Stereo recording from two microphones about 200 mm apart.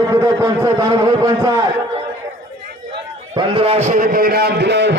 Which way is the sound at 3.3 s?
30° right (ahead or behind).